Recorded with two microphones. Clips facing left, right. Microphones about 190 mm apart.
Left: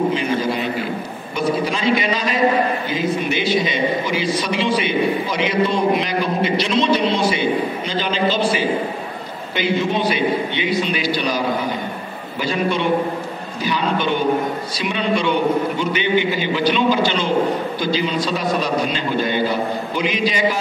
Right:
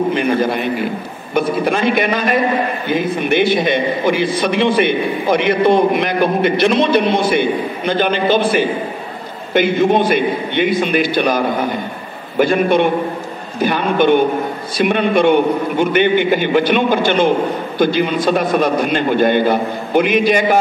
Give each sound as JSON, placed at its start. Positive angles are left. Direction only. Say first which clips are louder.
{"t": 0.1, "sound": "a man's voice", "louder": "right 4 dB", "side_deg": -55}